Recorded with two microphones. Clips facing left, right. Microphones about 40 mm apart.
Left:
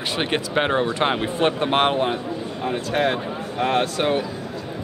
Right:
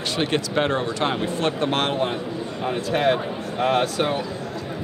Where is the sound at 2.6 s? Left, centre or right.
Centre.